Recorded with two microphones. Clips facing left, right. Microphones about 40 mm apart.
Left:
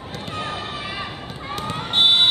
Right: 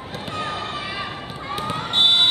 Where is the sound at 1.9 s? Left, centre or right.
Centre.